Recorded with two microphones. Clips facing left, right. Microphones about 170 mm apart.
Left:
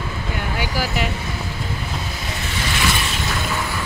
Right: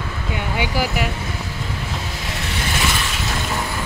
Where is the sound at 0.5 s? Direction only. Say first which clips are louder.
Right 3 dB; 20° right (ahead or behind).